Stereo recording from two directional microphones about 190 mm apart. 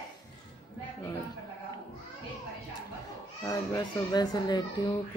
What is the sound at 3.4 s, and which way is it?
Speech, 20° left (ahead or behind).